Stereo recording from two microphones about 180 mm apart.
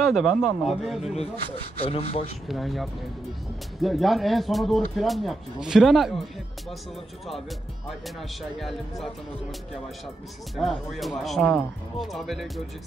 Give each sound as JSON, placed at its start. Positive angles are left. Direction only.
{"t": 0.0, "sound": "speech", "side_deg": 0}
{"t": 1.8, "sound": "speech", "side_deg": 35}
{"t": 2.4, "sound": "speech", "side_deg": 0}
{"t": 8.2, "sound": "speech", "side_deg": 0}